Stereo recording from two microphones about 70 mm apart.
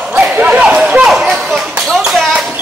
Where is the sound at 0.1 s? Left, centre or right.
Right.